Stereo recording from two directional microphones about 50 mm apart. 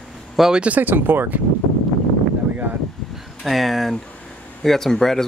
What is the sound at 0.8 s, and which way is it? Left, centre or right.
Speech, right.